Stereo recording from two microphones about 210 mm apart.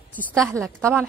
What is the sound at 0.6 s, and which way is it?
Speech, 10° right (ahead or behind).